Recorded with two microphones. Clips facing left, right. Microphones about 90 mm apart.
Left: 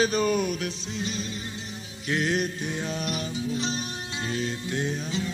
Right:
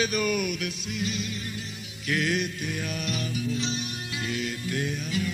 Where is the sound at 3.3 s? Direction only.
35° left (ahead or behind).